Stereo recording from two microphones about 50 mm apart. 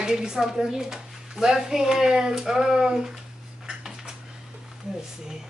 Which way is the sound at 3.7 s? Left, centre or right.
Centre.